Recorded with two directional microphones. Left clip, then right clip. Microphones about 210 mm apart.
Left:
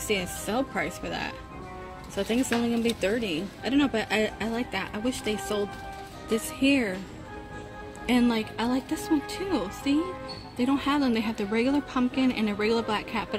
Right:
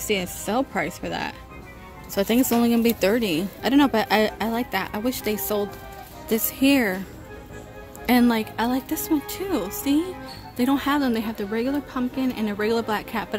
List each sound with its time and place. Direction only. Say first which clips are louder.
0.0 s speech: right 3 dB; 25° right (ahead or behind)
8.1 s speech: right 5 dB; 15° right (ahead or behind)